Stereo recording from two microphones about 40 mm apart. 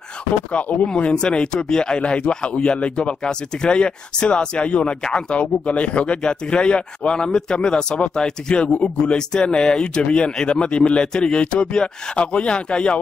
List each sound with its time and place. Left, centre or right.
0.5 s speech: left
0.9 s speech: left